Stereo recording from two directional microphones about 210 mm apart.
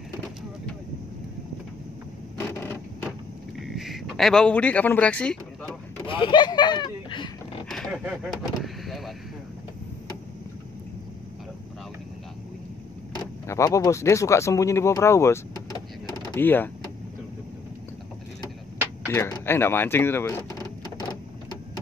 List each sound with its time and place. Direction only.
3.5 s a sound: centre (ahead or behind)
6.0 s speech: 25° left (ahead or behind)
7.7 s a sound: 5° right (ahead or behind)
8.6 s speech: centre (ahead or behind)
13.5 s speech: 15° left (ahead or behind)
19.0 s vehicle: 15° left (ahead or behind)